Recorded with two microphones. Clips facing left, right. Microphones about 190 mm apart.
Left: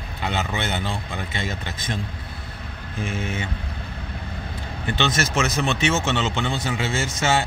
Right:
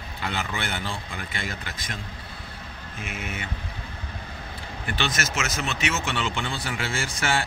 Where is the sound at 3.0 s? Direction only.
30° left (ahead or behind).